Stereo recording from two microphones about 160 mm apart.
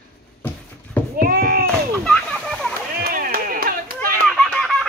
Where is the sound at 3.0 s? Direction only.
65° right (ahead or behind).